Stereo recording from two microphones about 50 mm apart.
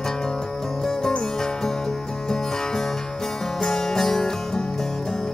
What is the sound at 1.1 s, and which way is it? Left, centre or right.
Music, centre.